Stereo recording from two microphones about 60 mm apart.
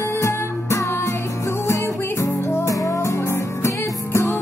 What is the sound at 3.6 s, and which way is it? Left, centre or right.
Music, left.